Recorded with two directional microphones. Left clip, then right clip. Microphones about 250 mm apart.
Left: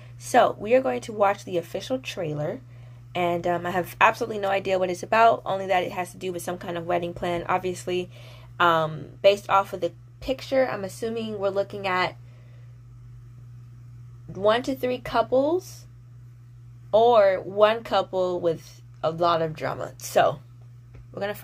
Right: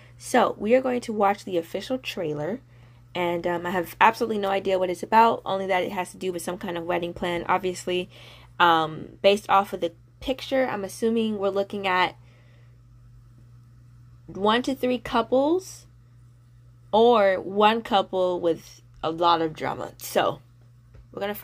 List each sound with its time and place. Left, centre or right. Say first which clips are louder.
0.0 s a woman's voice: left 2 dB; right
14.3 s speech: left 1 dB; right
16.9 s speech: left 1 dB; right